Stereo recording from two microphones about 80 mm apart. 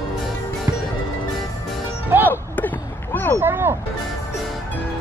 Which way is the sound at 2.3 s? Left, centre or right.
Left.